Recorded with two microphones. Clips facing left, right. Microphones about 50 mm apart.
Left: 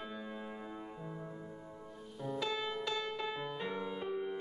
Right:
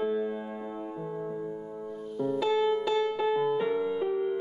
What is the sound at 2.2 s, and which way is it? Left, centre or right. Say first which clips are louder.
Music: right 11 dB; centre.